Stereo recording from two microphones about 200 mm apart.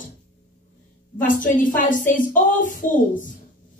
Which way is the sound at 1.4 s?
40° left (ahead or behind).